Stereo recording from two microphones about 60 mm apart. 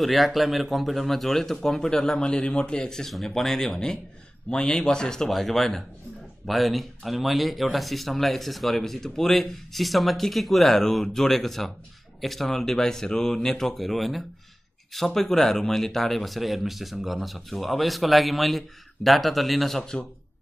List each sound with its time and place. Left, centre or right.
0.0 s speech: centre
19.8 s speech: centre